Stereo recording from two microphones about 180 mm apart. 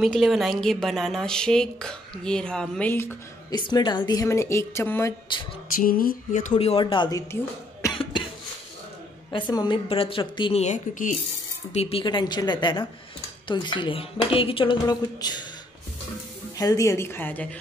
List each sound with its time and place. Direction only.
0.0 s a woman's voice: centre (ahead or behind)
3.5 s speech: 25° left (ahead or behind)
5.8 s a sound: 55° left (ahead or behind)
6.5 s a woman's voice: 30° left (ahead or behind)
7.8 s cough: 25° left (ahead or behind)
9.3 s a woman's voice: 25° left (ahead or behind)
16.5 s speech: 20° left (ahead or behind)